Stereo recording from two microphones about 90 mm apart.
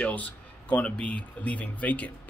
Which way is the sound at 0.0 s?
15° left (ahead or behind).